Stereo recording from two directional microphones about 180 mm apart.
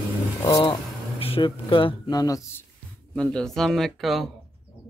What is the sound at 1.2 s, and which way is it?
Speech, 30° left (ahead or behind).